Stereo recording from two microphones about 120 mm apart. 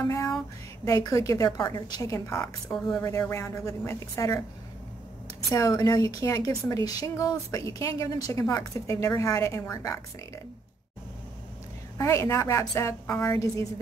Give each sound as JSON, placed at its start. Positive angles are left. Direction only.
{"t": 0.8, "sound": "a woman's voice", "side_deg": 30}
{"t": 5.5, "sound": "a woman's voice", "side_deg": 30}
{"t": 12.0, "sound": "a woman's voice", "side_deg": 25}